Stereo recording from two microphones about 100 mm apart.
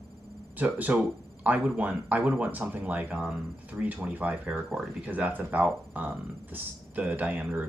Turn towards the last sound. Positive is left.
turn(degrees=-15)  # may be behind; listen again after turning